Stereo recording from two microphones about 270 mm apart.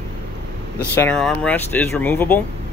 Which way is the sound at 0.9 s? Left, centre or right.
Centre.